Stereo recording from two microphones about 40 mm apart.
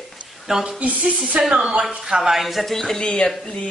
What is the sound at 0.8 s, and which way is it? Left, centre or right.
Speech, right.